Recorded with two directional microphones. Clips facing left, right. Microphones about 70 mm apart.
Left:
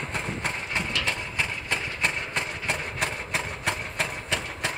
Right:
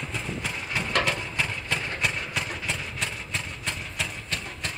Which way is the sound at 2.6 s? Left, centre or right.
Left.